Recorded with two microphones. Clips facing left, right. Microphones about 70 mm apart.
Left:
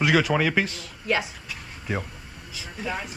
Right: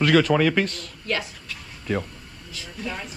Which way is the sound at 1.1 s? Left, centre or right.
Centre.